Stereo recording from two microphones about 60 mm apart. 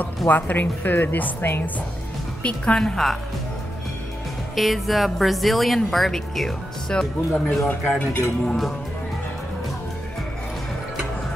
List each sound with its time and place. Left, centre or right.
0.3 s speech: left
2.4 s speech: centre
4.6 s a woman's voice: centre
7.4 s speech: left
8.5 s a woman's voice: centre